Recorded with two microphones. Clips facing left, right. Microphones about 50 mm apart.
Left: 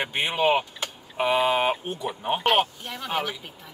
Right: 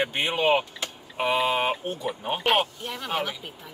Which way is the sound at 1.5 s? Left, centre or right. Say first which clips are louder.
Left 2 dB; centre.